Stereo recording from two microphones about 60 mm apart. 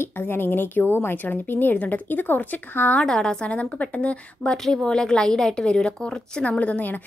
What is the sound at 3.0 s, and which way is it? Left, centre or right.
A woman's voice, centre.